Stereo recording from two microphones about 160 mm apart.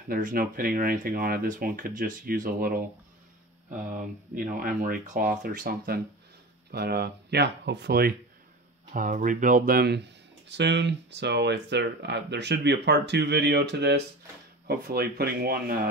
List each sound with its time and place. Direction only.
0.1 s speech: 60° right (ahead or behind)
4.4 s speech: 60° right (ahead or behind)
6.7 s speech: 85° right
8.9 s speech: 55° right (ahead or behind); by 14.0 s 90° right
14.7 s speech: 75° right (ahead or behind)